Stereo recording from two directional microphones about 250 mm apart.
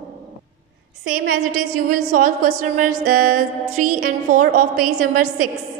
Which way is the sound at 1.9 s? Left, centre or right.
Right.